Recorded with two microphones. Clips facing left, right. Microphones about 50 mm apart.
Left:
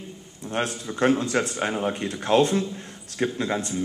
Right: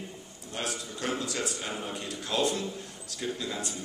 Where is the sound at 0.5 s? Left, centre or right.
Left.